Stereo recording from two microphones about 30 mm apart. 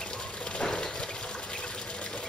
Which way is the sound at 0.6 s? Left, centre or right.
Left.